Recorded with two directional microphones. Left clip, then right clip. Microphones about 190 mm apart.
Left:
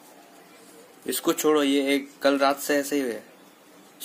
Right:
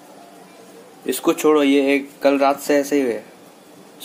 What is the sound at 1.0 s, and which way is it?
Speech, centre (ahead or behind).